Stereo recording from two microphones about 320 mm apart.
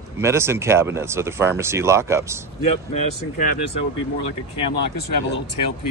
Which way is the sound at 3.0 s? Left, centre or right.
Left.